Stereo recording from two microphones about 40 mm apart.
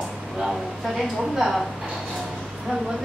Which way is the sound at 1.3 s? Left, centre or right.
Centre.